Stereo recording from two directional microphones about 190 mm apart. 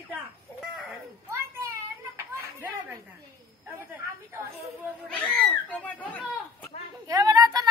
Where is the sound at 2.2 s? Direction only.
15° right (ahead or behind).